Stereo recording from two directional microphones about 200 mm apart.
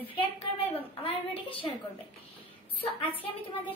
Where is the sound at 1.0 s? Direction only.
30° left (ahead or behind).